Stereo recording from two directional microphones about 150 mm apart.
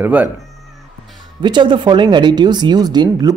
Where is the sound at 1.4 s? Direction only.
30° right (ahead or behind).